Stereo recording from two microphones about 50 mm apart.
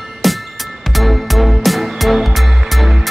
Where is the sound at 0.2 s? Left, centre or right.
Centre.